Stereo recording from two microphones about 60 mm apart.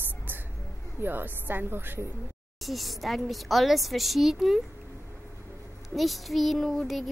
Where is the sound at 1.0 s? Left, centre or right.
Right.